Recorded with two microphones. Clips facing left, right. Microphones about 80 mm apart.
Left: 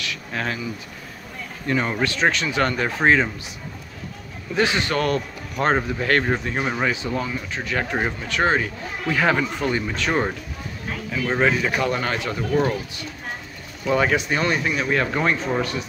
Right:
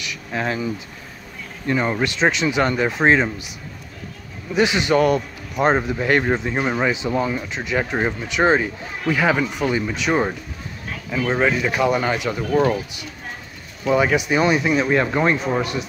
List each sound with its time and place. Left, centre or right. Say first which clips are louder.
0.0 s a sound: right 2 dB; centre
1.7 s speech: right 2 dB; centre
4.6 s speech: right 4 dB; centre
9.1 s speech: right 1 dB; centre
11.3 s speech: even; centre